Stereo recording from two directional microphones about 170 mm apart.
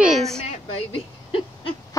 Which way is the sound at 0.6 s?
35° left (ahead or behind).